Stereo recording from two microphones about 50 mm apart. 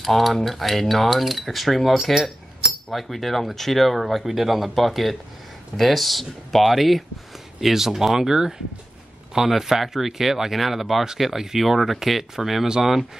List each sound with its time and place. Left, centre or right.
0.0 s speech: centre